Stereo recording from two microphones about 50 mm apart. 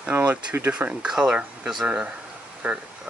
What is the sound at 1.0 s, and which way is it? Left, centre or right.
Speech, centre.